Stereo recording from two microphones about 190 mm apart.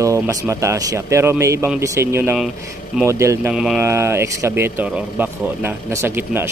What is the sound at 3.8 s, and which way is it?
Speech, 15° right (ahead or behind).